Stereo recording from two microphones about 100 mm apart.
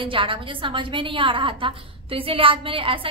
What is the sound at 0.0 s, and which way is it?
A woman's voice, 60° right (ahead or behind).